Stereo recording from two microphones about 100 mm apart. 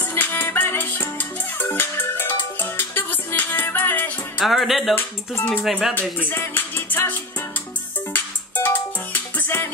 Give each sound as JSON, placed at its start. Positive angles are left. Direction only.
{"t": 0.0, "sound": "music", "side_deg": 20}
{"t": 4.4, "sound": "speech", "side_deg": 0}
{"t": 4.9, "sound": "speech", "side_deg": 25}
{"t": 5.6, "sound": "speech", "side_deg": 0}
{"t": 5.9, "sound": "music", "side_deg": 15}